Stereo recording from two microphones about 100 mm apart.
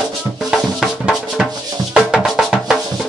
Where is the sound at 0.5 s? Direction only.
5° right (ahead or behind).